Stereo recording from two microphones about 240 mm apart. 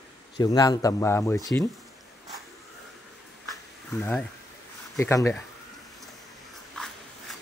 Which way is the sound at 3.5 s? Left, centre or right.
Centre.